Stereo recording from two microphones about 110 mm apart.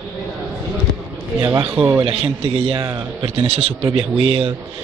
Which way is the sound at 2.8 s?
35° right (ahead or behind).